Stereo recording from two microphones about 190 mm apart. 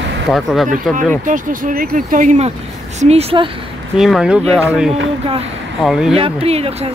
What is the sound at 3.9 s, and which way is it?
Speech, centre (ahead or behind).